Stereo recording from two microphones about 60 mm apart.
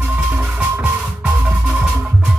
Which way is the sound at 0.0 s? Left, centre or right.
Right.